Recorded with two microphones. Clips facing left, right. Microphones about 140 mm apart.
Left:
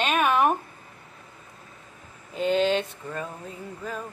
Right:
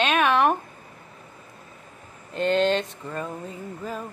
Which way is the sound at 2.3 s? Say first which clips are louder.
Right 1 dB; 5° left (ahead or behind).